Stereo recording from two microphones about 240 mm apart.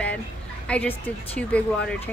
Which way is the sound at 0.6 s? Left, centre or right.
Centre.